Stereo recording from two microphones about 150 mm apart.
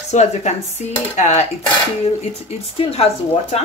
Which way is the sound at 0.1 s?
50° left (ahead or behind).